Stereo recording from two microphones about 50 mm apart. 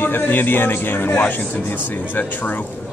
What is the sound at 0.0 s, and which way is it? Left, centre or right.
A man's voice, left.